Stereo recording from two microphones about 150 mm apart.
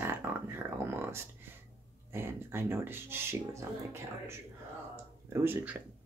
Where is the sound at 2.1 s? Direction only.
15° right (ahead or behind).